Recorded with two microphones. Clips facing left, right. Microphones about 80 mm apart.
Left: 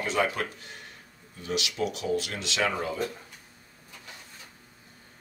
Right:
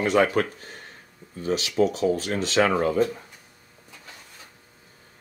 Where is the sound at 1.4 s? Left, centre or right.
Right.